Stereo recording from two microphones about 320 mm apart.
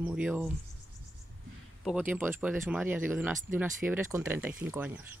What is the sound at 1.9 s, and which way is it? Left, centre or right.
Speech, centre.